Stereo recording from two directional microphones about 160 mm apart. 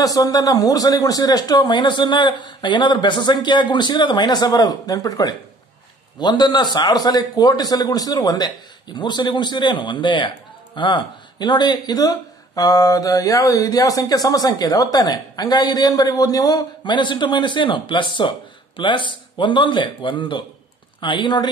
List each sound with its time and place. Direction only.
0.0 s a man's voice: 25° left (ahead or behind)